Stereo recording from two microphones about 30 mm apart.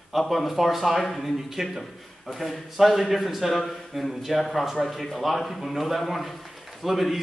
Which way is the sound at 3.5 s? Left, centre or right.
Centre.